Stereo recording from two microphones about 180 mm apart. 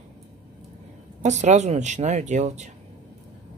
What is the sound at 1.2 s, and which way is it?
Speech, 40° right (ahead or behind).